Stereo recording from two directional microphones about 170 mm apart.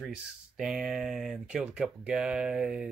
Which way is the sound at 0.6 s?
5° right (ahead or behind).